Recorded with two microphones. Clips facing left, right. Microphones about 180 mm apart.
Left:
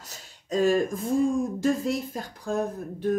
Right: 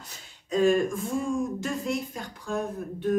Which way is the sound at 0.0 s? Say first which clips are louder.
Left 1 dB; 40° left (ahead or behind).